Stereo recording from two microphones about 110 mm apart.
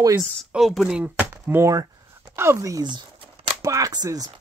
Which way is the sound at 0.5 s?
Centre (ahead or behind).